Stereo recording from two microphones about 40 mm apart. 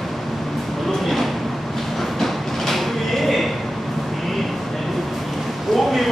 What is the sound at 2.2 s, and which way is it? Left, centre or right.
Train, centre.